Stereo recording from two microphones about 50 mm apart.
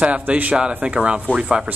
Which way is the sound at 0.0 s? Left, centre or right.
Right.